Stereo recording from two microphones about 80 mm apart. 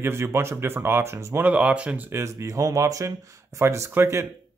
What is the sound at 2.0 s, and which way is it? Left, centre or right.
Speech, right.